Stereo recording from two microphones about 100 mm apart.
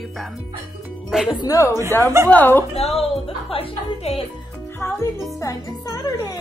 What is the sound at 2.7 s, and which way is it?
Speech, 90° left.